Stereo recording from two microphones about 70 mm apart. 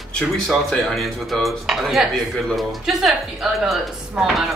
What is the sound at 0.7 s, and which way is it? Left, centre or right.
Speech, centre.